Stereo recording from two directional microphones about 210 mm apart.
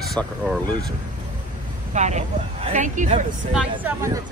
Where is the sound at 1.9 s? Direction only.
35° right (ahead or behind).